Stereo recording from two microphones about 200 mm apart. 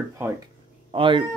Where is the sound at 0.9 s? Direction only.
25° right (ahead or behind).